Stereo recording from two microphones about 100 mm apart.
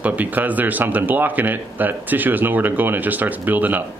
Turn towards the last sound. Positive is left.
turn(degrees=-15)  # may be behind; listen again after turning